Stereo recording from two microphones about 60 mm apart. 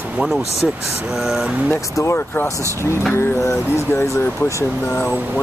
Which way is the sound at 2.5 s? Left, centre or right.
Right.